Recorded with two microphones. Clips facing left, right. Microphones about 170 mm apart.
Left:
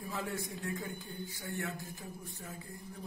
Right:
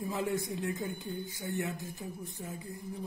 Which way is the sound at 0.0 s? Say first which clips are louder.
Right 6 dB; 20° right (ahead or behind).